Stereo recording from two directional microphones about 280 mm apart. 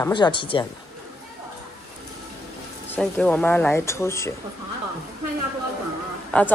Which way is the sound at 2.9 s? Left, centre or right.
Centre.